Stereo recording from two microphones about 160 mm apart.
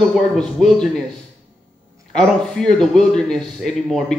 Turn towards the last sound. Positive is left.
turn(degrees=5)  # may be behind; listen again after turning